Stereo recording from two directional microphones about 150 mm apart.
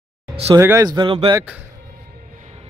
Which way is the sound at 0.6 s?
20° right (ahead or behind).